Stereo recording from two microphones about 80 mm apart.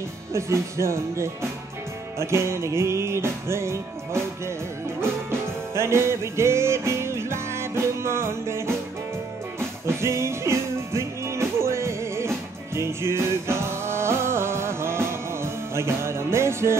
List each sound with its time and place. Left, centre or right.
0.3 s music: right
5.8 s music: right